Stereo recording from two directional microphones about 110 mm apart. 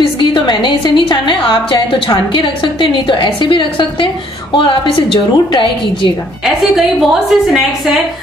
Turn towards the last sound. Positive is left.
turn(degrees=0)  # may be behind; listen again after turning